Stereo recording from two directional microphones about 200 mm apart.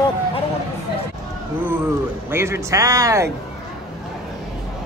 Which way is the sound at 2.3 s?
10° right (ahead or behind).